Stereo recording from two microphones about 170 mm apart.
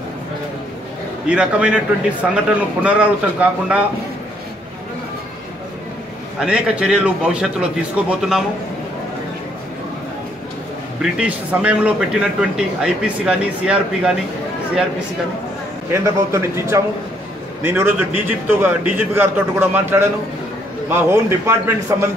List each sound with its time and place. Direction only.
1.2 s a man's voice: 5° right (ahead or behind)
6.4 s speech: 5° right (ahead or behind)
11.0 s speech: 5° right (ahead or behind)
15.9 s a man's voice: 15° right (ahead or behind)